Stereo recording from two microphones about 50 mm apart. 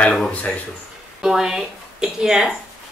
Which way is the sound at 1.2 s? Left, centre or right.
Centre.